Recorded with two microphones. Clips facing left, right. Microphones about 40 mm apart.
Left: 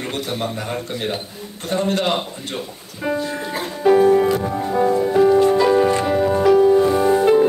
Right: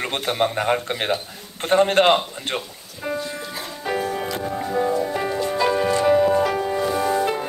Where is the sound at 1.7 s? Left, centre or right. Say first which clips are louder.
Right 4 dB; right.